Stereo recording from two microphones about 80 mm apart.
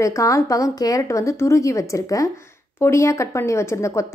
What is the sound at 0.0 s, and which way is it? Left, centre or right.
A woman's voice, left.